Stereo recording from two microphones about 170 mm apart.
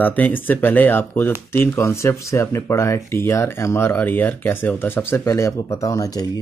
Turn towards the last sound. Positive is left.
turn(degrees=20)  # may be behind; listen again after turning